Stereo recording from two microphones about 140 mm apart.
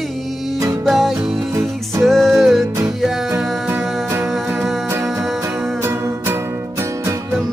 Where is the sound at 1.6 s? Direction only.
Centre (ahead or behind).